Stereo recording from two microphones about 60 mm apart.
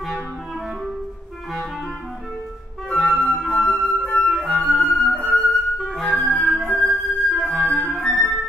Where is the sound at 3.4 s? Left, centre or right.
Centre.